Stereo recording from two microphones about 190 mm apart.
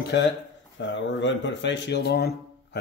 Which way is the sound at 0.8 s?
75° left (ahead or behind).